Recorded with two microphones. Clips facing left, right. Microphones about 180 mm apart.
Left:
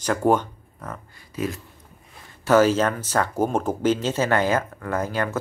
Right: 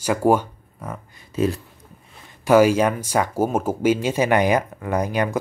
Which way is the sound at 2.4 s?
10° right (ahead or behind).